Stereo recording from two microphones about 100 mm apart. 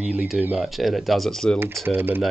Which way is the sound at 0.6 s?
Centre (ahead or behind).